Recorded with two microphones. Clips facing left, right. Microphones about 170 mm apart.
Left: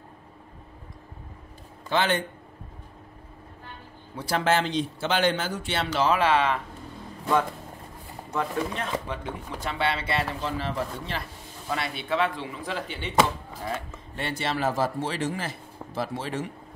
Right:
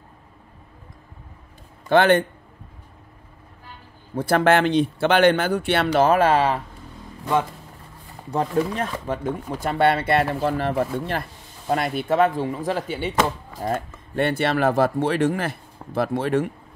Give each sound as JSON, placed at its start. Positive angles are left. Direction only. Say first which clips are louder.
{"t": 1.9, "sound": "speech", "louder": "right 9 dB", "side_deg": -55}
{"t": 4.1, "sound": "speech", "louder": "right 7 dB", "side_deg": -55}
{"t": 8.3, "sound": "speech", "louder": "right 6 dB", "side_deg": -35}
{"t": 9.0, "sound": "speech", "louder": "right 8 dB", "side_deg": -45}